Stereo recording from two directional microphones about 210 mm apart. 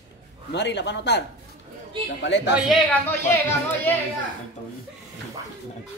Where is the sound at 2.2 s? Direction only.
55° left (ahead or behind).